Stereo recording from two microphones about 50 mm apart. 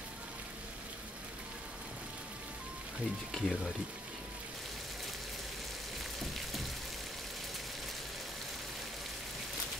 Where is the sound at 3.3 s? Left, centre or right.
Centre.